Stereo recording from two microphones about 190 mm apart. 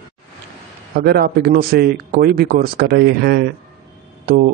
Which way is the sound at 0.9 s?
55° right (ahead or behind).